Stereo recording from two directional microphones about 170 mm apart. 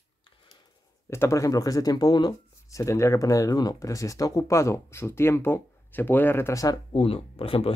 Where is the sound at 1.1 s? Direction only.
15° left (ahead or behind).